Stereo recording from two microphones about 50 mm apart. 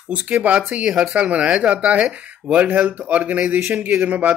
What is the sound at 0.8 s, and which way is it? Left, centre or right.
Speech, centre.